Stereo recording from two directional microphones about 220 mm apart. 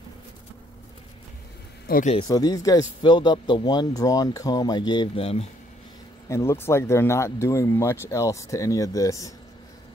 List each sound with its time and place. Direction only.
1.9 s speech: 40° left (ahead or behind)
2.1 s speech: 20° left (ahead or behind)
6.2 s speech: 10° left (ahead or behind)